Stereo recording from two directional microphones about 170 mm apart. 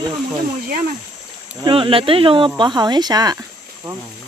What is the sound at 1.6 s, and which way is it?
Speech, 30° right (ahead or behind).